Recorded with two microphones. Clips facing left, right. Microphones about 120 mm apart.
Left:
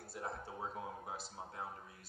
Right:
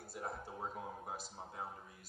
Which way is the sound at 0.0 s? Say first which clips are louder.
Even; 5° right (ahead or behind).